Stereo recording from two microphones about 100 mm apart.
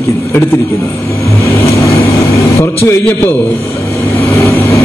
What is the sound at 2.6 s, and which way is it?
Speech, 25° left (ahead or behind).